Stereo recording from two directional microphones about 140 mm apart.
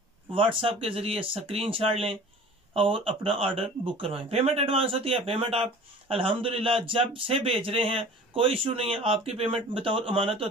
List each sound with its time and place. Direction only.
0.3 s speech: 40° right (ahead or behind)